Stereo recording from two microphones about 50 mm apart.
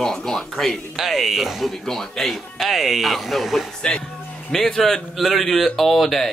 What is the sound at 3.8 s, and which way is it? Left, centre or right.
Speech, centre.